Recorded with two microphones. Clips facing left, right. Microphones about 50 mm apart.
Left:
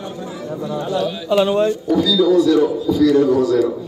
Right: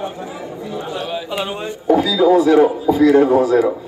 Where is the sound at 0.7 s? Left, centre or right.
Right.